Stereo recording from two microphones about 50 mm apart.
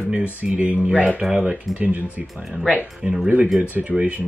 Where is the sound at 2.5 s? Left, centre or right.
Centre.